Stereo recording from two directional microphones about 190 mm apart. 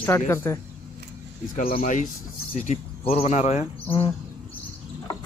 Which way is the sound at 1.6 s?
50° left (ahead or behind).